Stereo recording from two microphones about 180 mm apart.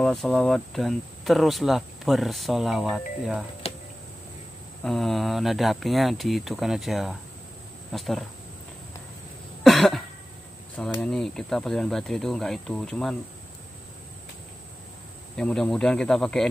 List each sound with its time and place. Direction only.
0.0 s speech: centre (ahead or behind)
3.6 s a sound: 35° left (ahead or behind)
4.8 s speech: centre (ahead or behind)
9.6 s cough: centre (ahead or behind)
11.0 s speech: 5° left (ahead or behind)
15.3 s speech: 5° left (ahead or behind)